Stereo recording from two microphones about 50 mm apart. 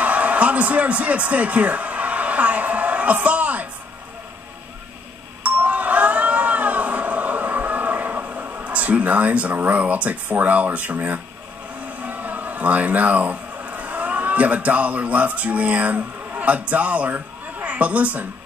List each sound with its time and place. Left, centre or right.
0.0 s speech: right
5.4 s doorbell: right
12.0 s a man's voice: right